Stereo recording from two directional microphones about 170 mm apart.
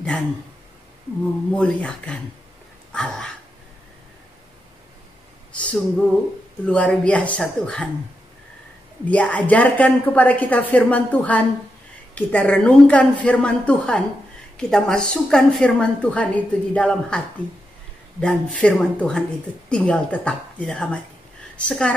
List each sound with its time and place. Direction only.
1.5 s a woman's voice: 5° left (ahead or behind)
2.9 s a sound: 5° left (ahead or behind)
5.6 s a sound: 5° left (ahead or behind)
6.6 s a woman's voice: 5° left (ahead or behind)
9.0 s a woman's voice: 10° left (ahead or behind)
18.2 s a woman's voice: 5° left (ahead or behind)